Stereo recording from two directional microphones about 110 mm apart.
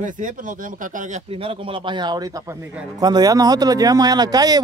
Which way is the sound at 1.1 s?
65° right (ahead or behind).